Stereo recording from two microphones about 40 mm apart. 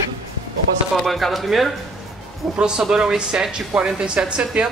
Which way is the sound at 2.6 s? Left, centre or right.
Right.